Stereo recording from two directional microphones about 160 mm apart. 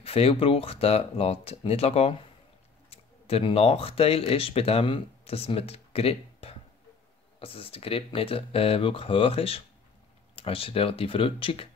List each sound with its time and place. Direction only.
0.0 s speech: 40° left (ahead or behind)